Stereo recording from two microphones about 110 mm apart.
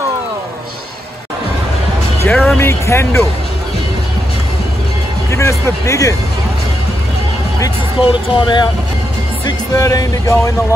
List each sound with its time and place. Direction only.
2.2 s speech: 10° left (ahead or behind)
2.6 s speech: 25° left (ahead or behind)
5.3 s speech: 25° left (ahead or behind)
8.1 s speech: 45° left (ahead or behind)
9.8 s speech: 30° left (ahead or behind)